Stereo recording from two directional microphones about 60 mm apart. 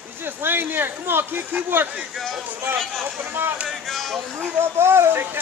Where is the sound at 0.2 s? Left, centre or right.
Right.